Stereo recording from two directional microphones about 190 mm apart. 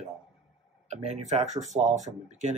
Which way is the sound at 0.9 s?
35° right (ahead or behind).